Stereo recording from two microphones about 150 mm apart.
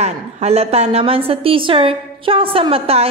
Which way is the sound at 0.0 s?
45° right (ahead or behind).